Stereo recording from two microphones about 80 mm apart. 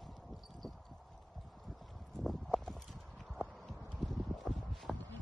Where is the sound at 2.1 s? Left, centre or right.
Centre.